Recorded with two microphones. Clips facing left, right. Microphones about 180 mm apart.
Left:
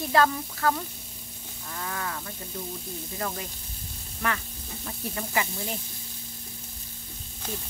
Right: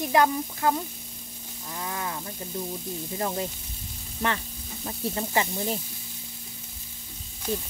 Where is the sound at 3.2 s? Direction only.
25° right (ahead or behind).